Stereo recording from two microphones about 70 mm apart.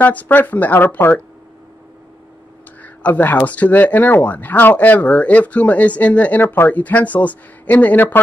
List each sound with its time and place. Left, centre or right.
0.0 s speech: left
2.8 s speech: left